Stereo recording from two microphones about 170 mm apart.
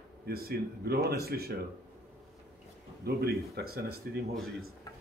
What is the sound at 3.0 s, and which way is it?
Speech, 65° right (ahead or behind).